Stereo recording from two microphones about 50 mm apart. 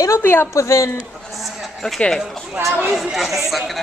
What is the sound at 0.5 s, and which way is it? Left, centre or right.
Speech, left.